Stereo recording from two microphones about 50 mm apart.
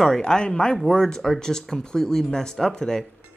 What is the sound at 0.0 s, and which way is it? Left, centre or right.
Speech, centre.